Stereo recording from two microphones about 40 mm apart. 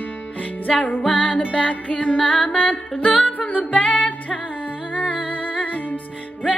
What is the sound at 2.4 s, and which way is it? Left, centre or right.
Music, left.